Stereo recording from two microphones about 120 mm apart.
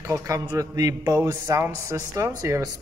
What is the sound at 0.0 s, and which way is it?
A man's voice, 25° right (ahead or behind).